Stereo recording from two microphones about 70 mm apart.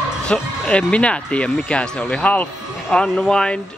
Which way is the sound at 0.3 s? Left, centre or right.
Centre.